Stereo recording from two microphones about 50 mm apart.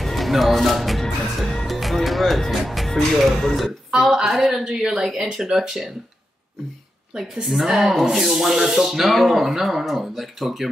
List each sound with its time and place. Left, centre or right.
0.0 s a woman's voice: centre
7.4 s speech: centre